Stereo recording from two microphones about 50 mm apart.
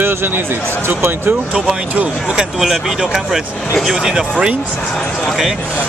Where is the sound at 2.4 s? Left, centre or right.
Centre.